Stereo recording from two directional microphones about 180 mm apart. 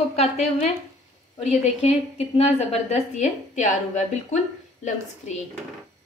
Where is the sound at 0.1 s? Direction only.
35° left (ahead or behind).